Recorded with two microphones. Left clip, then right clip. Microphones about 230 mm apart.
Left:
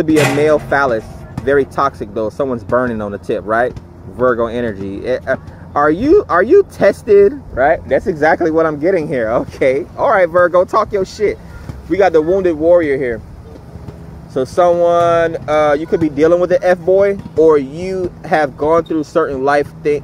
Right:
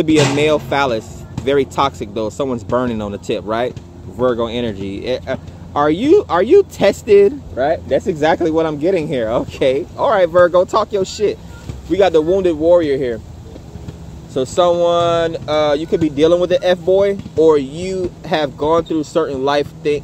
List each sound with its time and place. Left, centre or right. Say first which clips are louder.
0.1 s speech: left 1 dB; left
0.5 s speech: left 3 dB; centre
4.7 s speech: left 1 dB; left
5.0 s speech: left 5 dB; centre
14.3 s speech: left 2 dB; centre